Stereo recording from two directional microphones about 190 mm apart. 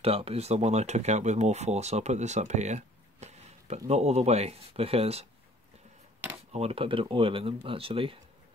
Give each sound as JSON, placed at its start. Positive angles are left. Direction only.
{"t": 0.0, "sound": "speech", "side_deg": -30}
{"t": 6.5, "sound": "speech", "side_deg": -30}